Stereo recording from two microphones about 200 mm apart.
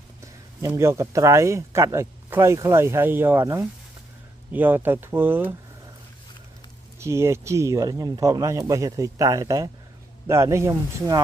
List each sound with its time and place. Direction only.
0.2 s speech: 15° right (ahead or behind)
7.0 s speech: 15° right (ahead or behind)